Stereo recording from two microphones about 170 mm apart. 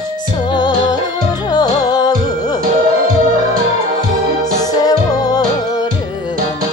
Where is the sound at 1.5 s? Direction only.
25° left (ahead or behind).